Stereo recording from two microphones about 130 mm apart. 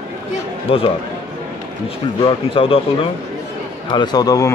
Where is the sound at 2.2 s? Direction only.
45° left (ahead or behind).